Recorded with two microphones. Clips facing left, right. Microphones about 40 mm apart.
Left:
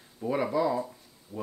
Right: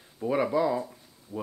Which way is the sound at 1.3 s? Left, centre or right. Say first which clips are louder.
Right 1 dB; left.